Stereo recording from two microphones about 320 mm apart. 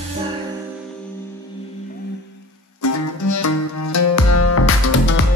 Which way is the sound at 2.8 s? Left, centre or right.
Left.